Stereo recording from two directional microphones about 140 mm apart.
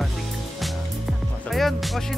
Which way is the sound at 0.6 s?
Centre (ahead or behind).